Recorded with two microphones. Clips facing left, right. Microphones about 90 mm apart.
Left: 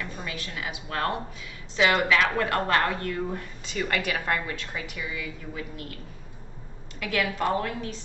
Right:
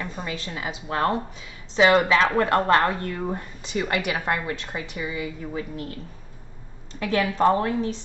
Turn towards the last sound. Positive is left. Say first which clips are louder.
# right 6 dB
turn(degrees=-30)  # may be behind; listen again after turning